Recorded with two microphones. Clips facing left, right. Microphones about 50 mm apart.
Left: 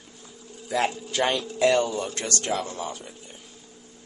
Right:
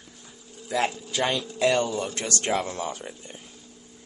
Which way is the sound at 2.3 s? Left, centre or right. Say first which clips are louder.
Right 2 dB; right.